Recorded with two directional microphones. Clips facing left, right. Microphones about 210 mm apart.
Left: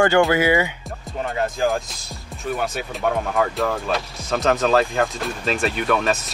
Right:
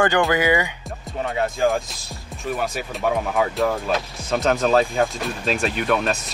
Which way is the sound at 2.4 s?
Centre (ahead or behind).